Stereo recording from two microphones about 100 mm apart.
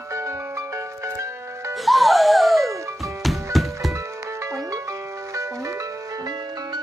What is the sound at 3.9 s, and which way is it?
Music, 30° right (ahead or behind).